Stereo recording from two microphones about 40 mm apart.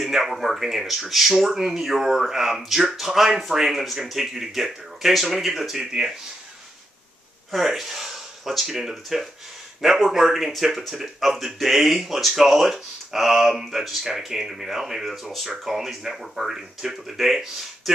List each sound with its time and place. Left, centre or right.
0.0 s speech: centre
7.5 s speech: centre